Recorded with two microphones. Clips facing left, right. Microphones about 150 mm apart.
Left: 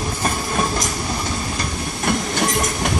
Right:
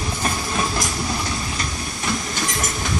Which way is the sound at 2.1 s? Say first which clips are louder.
Left 6 dB; 60° left (ahead or behind).